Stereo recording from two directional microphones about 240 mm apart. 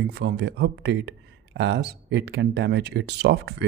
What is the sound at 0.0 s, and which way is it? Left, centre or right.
Speech, right.